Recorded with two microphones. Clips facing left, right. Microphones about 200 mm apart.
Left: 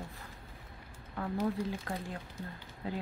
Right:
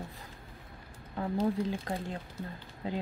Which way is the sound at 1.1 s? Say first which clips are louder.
Right 3 dB; 25° right (ahead or behind).